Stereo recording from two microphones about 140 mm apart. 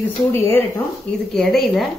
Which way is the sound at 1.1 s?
5° left (ahead or behind).